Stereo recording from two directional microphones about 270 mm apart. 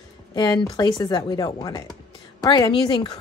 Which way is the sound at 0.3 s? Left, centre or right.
Centre.